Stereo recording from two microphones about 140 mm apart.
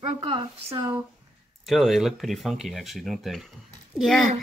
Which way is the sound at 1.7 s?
Centre (ahead or behind).